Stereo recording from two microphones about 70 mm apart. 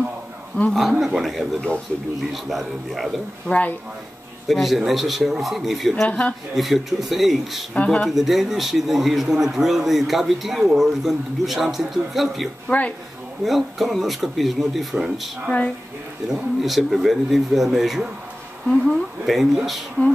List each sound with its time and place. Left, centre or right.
0.7 s a man's voice: centre
3.4 s speech: left
4.5 s a man's voice: centre
6.0 s speech: centre
6.5 s a man's voice: centre
7.7 s speech: centre
8.0 s a man's voice: centre
12.6 s speech: centre
13.4 s a man's voice: centre
16.3 s a man's voice: centre